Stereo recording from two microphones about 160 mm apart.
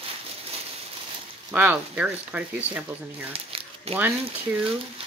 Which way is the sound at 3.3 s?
35° right (ahead or behind).